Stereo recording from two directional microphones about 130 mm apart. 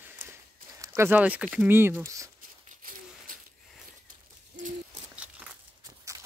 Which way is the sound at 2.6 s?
90° right.